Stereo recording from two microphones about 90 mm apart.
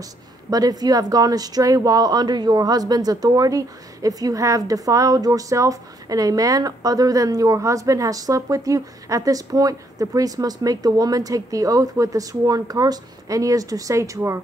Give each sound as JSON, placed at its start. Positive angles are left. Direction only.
{"t": 0.0, "sound": "a woman's voice", "side_deg": -45}